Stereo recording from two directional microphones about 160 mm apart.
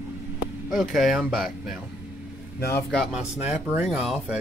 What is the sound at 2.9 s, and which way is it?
Speech, centre (ahead or behind).